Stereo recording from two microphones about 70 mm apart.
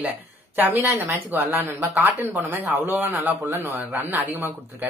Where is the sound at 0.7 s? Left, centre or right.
Right.